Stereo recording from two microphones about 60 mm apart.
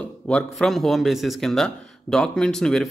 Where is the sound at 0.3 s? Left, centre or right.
Centre.